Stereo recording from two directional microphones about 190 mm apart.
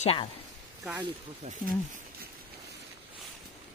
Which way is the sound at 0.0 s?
30° left (ahead or behind).